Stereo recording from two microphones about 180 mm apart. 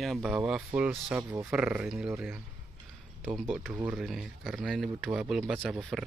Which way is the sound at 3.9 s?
Centre (ahead or behind).